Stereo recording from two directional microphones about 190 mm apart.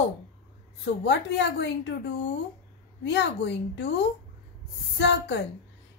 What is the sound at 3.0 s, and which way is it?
Speech, 65° left (ahead or behind).